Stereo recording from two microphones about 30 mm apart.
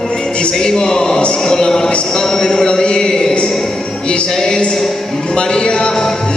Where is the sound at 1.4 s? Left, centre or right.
Left.